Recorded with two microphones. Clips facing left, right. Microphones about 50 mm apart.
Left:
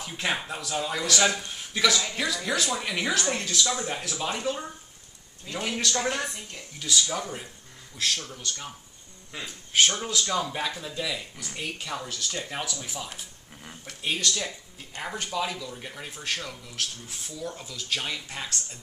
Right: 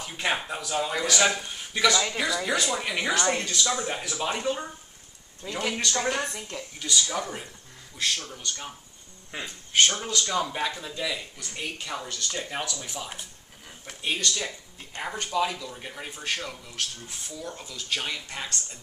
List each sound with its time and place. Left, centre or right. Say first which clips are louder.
0.0 s a man's voice: right 1 dB; centre
6.8 s speech: even; centre
9.3 s speech: right 2 dB; right
9.7 s a man's voice: even; centre